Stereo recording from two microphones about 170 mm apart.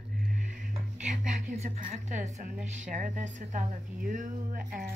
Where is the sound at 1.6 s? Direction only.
45° right (ahead or behind).